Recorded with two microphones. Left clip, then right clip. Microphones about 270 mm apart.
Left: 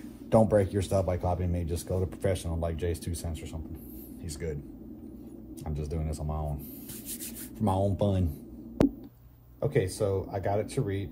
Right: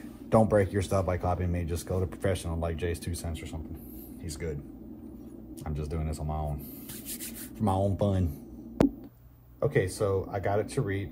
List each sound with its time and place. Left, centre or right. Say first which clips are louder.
0.3 s speech: even; right
5.7 s speech: even; right
7.5 s speech: even; right
8.8 s a sound: even; centre
9.6 s speech: right 1 dB; right